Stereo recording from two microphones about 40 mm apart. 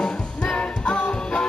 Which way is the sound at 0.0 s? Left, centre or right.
Left.